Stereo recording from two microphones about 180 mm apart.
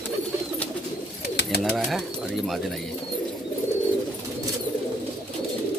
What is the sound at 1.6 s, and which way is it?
Speech, 5° left (ahead or behind).